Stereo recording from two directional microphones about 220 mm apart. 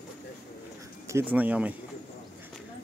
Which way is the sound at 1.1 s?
10° right (ahead or behind).